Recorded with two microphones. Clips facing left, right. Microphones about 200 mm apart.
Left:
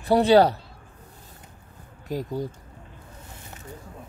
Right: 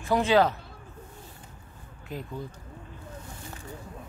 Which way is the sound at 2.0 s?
40° left (ahead or behind).